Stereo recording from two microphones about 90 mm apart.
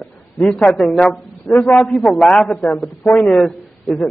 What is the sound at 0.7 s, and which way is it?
A man's voice, 5° left (ahead or behind).